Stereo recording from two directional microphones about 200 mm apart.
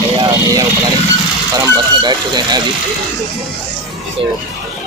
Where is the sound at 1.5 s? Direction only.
20° right (ahead or behind).